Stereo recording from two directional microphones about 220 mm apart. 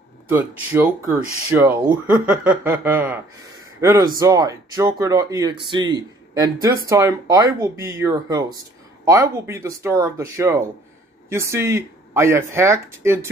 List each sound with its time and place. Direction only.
0.3 s speech: 10° right (ahead or behind)